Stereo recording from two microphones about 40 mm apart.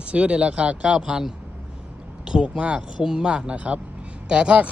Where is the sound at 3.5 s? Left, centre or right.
Right.